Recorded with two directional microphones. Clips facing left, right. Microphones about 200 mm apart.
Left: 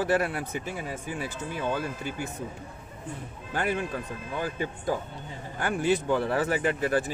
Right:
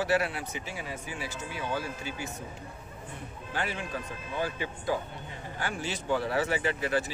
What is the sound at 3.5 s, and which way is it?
Speech, 50° left (ahead or behind).